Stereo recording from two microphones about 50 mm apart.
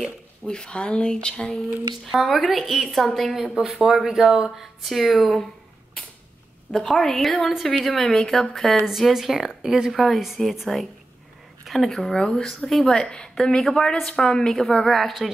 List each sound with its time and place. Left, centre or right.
0.5 s a woman's voice: centre
2.0 s a woman's voice: centre
3.6 s a woman's voice: centre
6.7 s a woman's voice: centre
8.8 s speech: centre
9.9 s a woman's voice: centre